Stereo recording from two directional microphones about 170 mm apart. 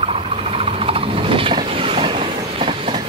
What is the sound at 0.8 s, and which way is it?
Train, 35° right (ahead or behind).